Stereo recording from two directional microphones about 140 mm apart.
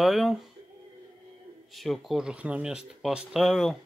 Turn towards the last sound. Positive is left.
turn(degrees=0)  # may be behind; listen again after turning